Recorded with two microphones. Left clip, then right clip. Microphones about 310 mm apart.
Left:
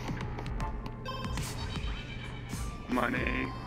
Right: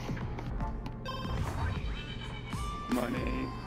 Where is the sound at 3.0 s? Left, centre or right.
Left.